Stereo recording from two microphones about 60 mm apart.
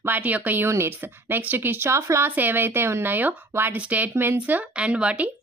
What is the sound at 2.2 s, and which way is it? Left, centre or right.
Speech, right.